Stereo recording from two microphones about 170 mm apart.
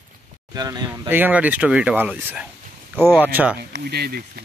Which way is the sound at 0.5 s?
20° right (ahead or behind).